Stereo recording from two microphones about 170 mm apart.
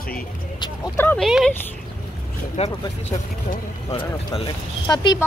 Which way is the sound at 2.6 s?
40° left (ahead or behind).